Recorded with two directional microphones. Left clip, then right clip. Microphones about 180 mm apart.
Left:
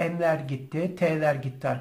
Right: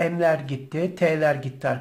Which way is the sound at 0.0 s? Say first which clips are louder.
Right 4 dB; 30° right (ahead or behind).